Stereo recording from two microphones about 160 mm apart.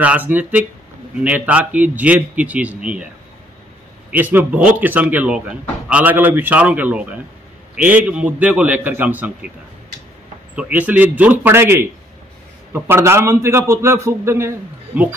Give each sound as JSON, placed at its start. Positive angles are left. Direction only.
{"t": 0.0, "sound": "speech", "side_deg": -10}
{"t": 4.1, "sound": "speech", "side_deg": -10}
{"t": 10.5, "sound": "speech", "side_deg": -10}